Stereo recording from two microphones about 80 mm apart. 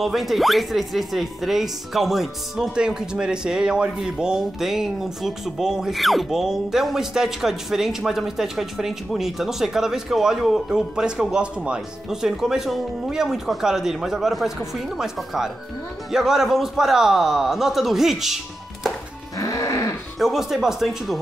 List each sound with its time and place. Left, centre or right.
0.0 s speech: centre
19.3 s music: left
20.2 s speech: centre